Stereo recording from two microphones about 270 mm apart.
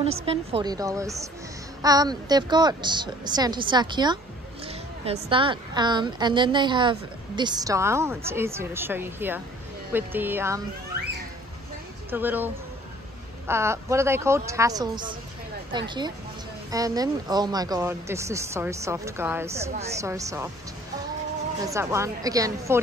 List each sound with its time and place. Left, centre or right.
0.0 s a woman's voice: right
12.1 s a woman's voice: centre
13.5 s a woman's voice: centre
16.7 s a woman's voice: centre
21.6 s a woman's voice: centre